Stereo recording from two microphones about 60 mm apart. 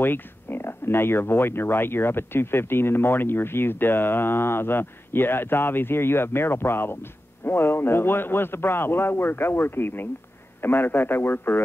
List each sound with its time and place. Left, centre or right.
0.0 s speech: left